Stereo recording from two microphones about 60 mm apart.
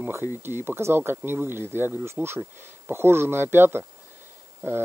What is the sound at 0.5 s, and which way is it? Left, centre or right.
Speech, right.